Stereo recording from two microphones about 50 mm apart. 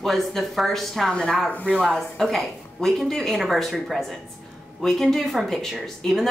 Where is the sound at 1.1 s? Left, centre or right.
Centre.